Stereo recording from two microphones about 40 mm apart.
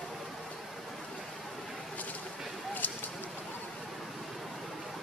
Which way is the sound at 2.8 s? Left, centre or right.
Left.